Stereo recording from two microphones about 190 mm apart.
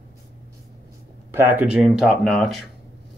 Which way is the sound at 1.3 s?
10° right (ahead or behind).